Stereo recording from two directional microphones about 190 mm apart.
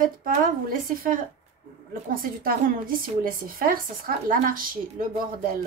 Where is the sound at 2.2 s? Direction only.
50° right (ahead or behind).